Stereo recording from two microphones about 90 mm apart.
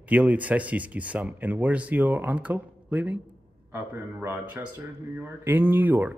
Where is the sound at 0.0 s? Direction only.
15° right (ahead or behind).